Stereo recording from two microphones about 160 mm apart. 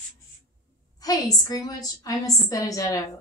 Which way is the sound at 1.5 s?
20° left (ahead or behind).